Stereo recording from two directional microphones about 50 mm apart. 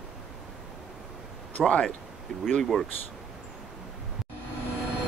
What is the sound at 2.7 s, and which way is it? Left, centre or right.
Speech, centre.